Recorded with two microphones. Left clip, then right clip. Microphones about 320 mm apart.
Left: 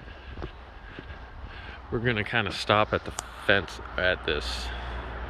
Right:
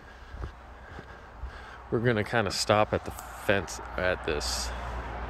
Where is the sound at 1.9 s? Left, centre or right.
Centre.